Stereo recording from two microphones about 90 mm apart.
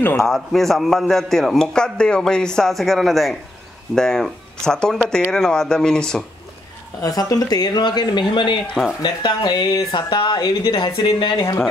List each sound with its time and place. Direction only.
0.2 s a man's voice: 5° left (ahead or behind)
7.0 s speech: 40° left (ahead or behind)